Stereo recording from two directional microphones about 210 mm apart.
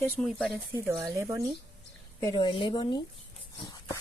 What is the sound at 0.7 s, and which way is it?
Speech, 10° right (ahead or behind).